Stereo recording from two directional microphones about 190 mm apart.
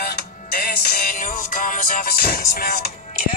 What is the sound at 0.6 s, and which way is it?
Music, 50° left (ahead or behind).